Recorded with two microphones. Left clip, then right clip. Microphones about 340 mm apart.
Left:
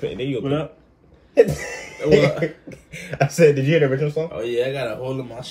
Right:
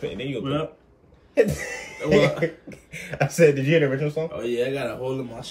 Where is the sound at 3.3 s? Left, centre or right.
Centre.